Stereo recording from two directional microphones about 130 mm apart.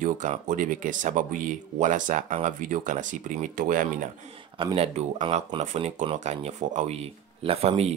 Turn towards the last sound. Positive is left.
turn(degrees=-50)  # may be behind; listen again after turning